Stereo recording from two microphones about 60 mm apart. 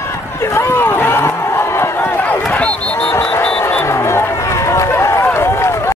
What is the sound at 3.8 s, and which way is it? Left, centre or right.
Run, left.